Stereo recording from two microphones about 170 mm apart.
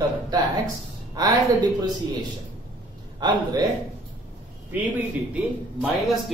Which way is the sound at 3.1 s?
25° right (ahead or behind).